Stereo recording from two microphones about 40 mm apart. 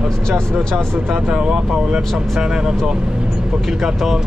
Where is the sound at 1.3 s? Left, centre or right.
Right.